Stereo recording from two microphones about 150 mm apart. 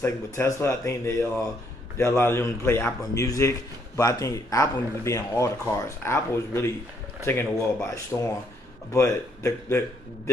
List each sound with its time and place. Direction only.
0.0 s a man's voice: 20° left (ahead or behind)